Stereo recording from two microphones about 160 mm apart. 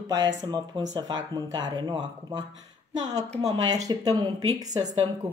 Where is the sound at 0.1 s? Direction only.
25° right (ahead or behind).